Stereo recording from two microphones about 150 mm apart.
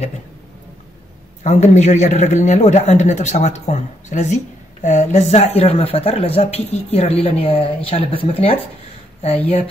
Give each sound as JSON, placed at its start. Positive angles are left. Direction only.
{"t": 1.4, "sound": "a man's voice", "side_deg": 50}